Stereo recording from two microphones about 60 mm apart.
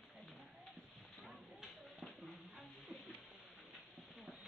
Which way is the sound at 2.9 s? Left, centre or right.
Centre.